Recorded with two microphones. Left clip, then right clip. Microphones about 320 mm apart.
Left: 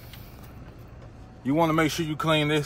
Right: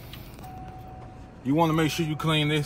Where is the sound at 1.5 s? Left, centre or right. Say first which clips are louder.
Left 1 dB; centre.